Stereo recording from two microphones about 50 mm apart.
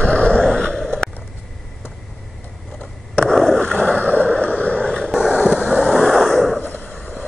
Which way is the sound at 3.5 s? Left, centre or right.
Left.